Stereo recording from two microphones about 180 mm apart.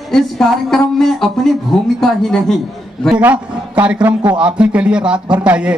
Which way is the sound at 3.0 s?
5° right (ahead or behind).